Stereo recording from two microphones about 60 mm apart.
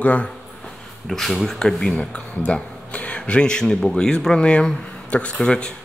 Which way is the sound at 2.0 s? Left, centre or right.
Centre.